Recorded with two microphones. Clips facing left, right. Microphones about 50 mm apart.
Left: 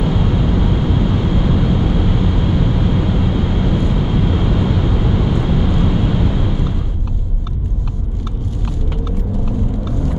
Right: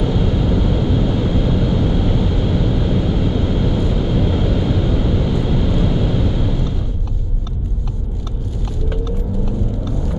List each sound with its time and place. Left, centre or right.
0.0 s vehicle: centre